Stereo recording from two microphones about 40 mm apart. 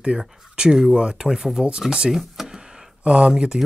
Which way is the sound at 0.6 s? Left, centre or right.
Centre.